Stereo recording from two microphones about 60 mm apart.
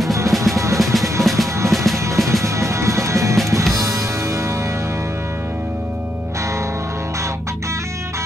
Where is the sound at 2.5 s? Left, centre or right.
Right.